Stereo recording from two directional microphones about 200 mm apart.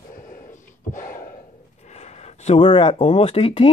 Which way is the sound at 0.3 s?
40° left (ahead or behind).